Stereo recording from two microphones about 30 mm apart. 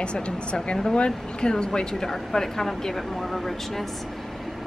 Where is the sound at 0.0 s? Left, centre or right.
Left.